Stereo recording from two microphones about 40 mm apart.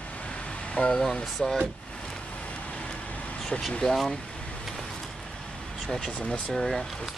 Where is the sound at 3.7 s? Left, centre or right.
Centre.